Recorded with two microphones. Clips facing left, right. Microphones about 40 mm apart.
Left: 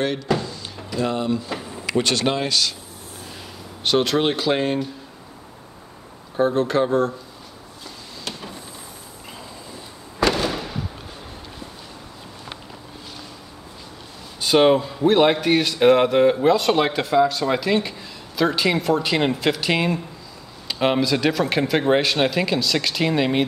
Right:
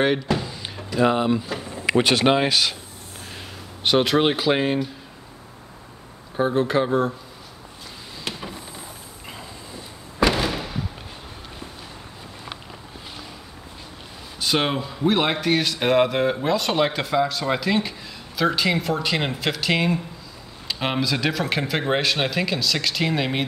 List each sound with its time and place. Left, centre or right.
0.4 s door: centre
1.9 s speech: right
3.8 s speech: centre
6.3 s speech: centre
8.3 s a sound: centre
10.2 s fireworks: centre
14.4 s speech: centre